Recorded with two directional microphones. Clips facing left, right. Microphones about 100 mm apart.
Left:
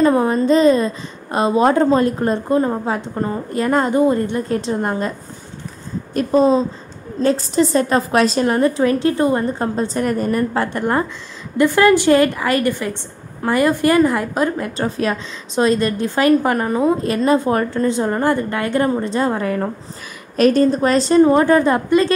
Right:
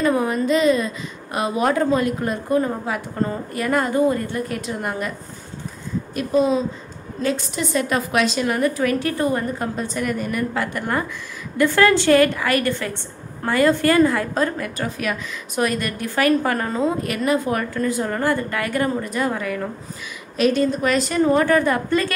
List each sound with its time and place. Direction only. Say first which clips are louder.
0.0 s a woman's voice: left 5 dB; 30° left (ahead or behind)
6.1 s a woman's voice: left 5 dB; 35° left (ahead or behind); by 14.7 s 20° left (ahead or behind)
14.8 s a woman's voice: left 6 dB; 30° left (ahead or behind)